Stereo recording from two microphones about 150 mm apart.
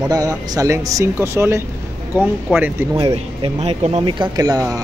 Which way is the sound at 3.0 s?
40° right (ahead or behind).